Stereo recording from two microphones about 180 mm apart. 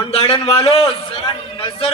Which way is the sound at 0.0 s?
30° left (ahead or behind).